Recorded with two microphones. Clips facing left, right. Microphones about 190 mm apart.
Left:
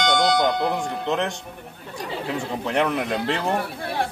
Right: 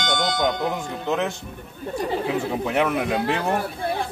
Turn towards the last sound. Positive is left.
turn(degrees=-5)  # may be behind; listen again after turning